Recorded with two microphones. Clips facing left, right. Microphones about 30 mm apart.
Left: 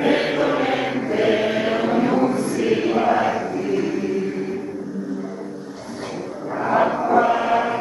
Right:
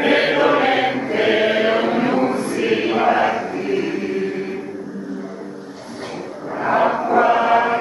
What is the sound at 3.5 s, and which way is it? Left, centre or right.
Chant, right.